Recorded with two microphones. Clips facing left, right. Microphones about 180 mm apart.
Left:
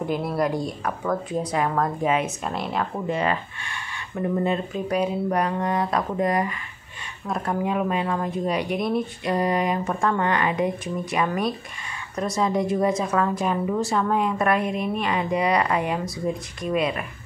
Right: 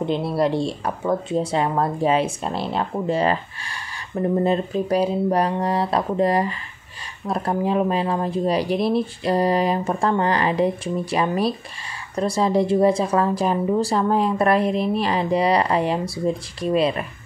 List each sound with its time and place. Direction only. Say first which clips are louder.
0.0 s speech: right 3 dB; 25° right (ahead or behind)